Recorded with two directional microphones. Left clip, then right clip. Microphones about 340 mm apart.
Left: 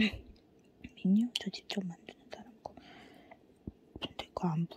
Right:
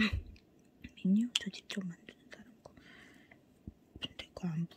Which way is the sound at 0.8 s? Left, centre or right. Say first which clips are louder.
Left 2 dB; centre.